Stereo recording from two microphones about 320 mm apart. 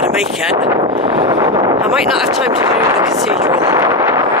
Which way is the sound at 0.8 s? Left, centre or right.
Centre.